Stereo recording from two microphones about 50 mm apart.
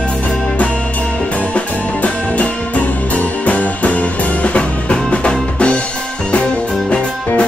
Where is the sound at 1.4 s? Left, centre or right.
Left.